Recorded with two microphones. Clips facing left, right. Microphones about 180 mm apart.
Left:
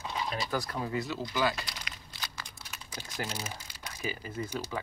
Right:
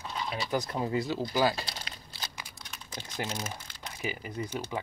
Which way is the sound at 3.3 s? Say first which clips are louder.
Right 2 dB; 10° left (ahead or behind).